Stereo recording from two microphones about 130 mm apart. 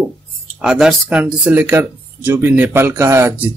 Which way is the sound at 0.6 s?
5° right (ahead or behind).